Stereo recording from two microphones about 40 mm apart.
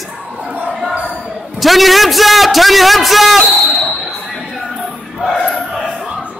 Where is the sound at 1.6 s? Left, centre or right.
Centre.